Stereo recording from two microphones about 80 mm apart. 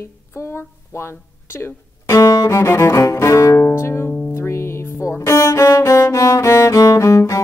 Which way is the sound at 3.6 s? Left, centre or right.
Left.